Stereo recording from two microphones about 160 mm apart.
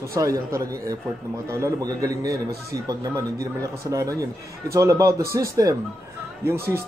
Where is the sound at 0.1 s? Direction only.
20° right (ahead or behind).